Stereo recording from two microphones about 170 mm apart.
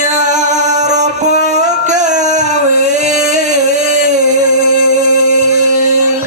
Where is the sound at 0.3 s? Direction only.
45° right (ahead or behind).